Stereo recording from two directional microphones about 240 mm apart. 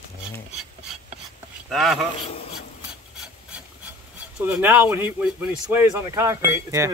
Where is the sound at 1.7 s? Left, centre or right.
Centre.